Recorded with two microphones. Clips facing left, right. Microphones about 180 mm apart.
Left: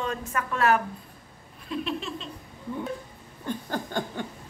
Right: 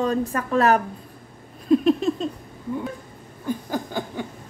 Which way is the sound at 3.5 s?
10° right (ahead or behind).